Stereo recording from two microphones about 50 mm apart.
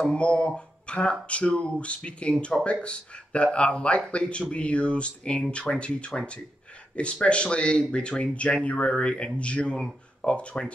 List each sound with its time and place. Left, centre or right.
0.0 s speech: left